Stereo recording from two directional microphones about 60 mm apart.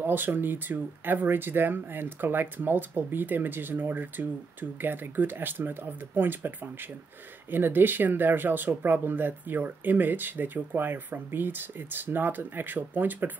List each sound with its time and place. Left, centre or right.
0.0 s speech: right
7.5 s speech: right